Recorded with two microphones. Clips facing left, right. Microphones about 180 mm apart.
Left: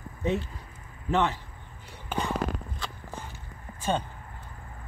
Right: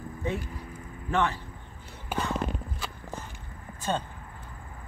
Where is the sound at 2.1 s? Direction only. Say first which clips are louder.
Even; 10° right (ahead or behind).